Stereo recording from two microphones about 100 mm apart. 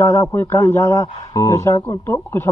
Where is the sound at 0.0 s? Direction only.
25° left (ahead or behind).